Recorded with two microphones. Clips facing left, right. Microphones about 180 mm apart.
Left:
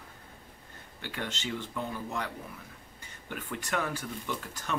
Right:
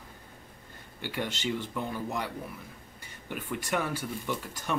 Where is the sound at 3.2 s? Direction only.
10° right (ahead or behind).